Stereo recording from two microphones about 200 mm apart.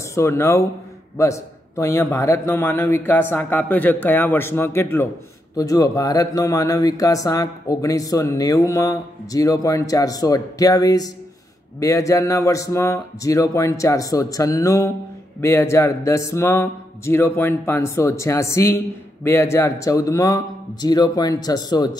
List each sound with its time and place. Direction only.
0.0 s a man's voice: 15° left (ahead or behind)